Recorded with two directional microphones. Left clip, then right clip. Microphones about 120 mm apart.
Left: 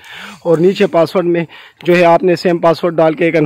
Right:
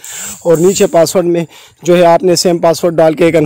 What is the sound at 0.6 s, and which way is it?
Speech, 30° right (ahead or behind).